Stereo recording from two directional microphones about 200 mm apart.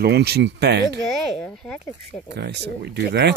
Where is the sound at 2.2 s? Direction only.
55° right (ahead or behind).